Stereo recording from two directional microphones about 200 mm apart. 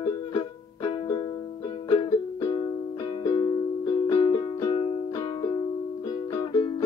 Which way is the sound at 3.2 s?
20° left (ahead or behind).